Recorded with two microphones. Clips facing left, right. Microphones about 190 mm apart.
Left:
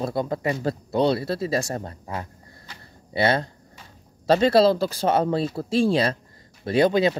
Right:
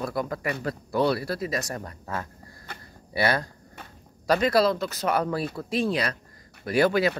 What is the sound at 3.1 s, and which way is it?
Speech, 25° left (ahead or behind).